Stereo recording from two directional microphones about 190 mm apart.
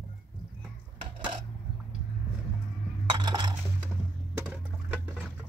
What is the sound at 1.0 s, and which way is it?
Coin, 25° right (ahead or behind).